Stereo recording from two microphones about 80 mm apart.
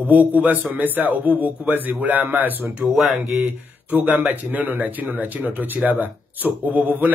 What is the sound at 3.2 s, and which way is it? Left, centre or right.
Speech, right.